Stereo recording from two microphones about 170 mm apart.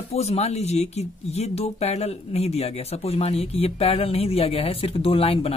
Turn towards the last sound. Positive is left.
turn(degrees=35)  # may be behind; listen again after turning